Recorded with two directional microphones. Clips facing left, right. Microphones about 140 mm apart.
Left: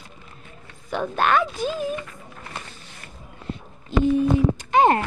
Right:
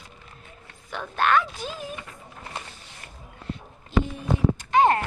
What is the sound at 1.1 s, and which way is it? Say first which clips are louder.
Speech: left 1 dB; 15° left (ahead or behind).